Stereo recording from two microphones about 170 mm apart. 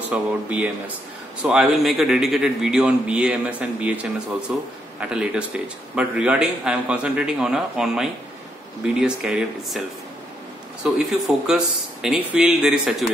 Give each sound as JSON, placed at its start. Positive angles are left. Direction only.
{"t": 0.1, "sound": "a man's voice", "side_deg": -5}
{"t": 11.4, "sound": "a man's voice", "side_deg": -5}